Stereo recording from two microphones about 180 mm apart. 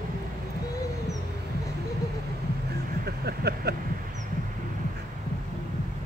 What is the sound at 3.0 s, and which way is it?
Vehicle, 65° right (ahead or behind).